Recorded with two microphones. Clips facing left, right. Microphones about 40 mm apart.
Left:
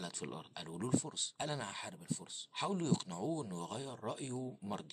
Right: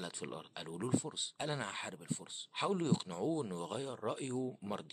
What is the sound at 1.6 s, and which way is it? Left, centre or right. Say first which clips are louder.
Speech: right 3 dB; right.